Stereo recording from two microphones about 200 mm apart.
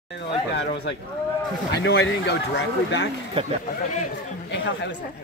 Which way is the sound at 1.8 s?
60° left (ahead or behind).